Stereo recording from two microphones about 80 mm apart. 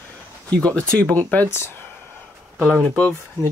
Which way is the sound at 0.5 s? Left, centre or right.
Centre.